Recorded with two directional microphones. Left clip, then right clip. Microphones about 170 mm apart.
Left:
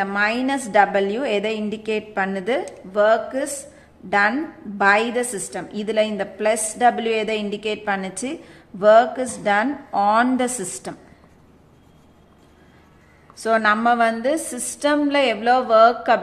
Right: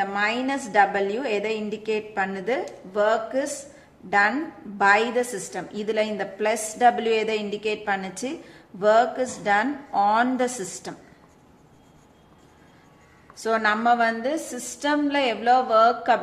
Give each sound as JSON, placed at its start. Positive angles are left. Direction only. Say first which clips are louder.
{"t": 0.0, "sound": "a woman's voice", "louder": "left 3 dB", "side_deg": 20}
{"t": 13.4, "sound": "a woman's voice", "louder": "left 4 dB", "side_deg": 15}